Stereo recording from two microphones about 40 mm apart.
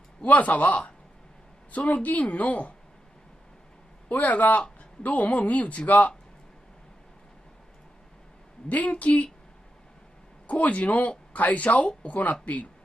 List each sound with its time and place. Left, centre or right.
0.2 s speech: left
4.1 s speech: left
8.6 s speech: left
10.4 s speech: left